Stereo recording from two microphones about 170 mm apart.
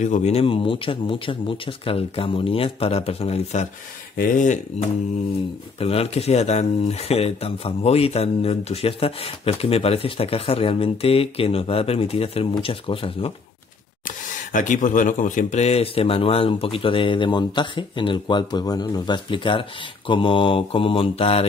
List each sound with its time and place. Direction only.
0.0 s speech: 45° left (ahead or behind)
5.8 s speech: 35° left (ahead or behind)
14.0 s speech: 50° left (ahead or behind)